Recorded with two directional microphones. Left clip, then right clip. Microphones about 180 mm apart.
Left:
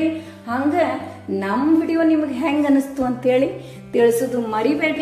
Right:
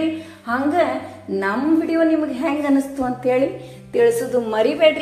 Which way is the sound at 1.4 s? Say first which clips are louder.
Left 1 dB; 25° left (ahead or behind).